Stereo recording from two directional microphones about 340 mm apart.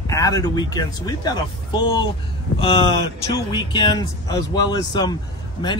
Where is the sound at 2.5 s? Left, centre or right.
Left.